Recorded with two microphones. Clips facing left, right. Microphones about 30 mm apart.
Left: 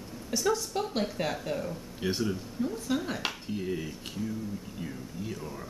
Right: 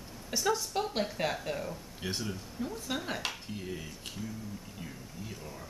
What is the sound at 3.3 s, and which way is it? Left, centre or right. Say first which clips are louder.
Speech: left 6 dB; centre.